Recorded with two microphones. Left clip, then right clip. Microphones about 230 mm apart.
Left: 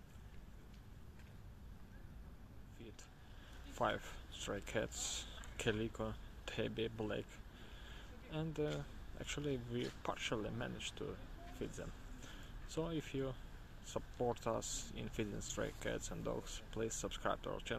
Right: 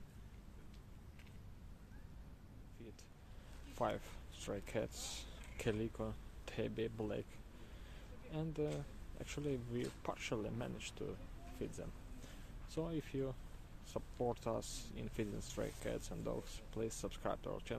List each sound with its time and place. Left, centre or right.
3.7 s speech: centre
7.9 s a sound: centre
8.7 s speech: centre